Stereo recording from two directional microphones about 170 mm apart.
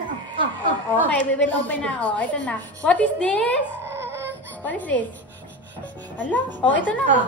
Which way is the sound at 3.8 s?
15° right (ahead or behind).